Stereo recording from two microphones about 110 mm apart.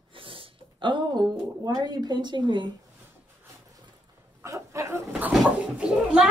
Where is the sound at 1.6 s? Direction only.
35° right (ahead or behind).